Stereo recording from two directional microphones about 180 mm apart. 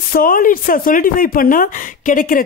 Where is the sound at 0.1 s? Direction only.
50° left (ahead or behind).